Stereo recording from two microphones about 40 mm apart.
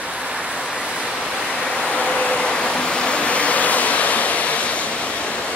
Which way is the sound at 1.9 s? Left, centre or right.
Left.